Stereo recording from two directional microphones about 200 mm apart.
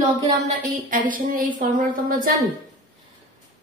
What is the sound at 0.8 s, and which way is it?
A woman's voice, 45° right (ahead or behind).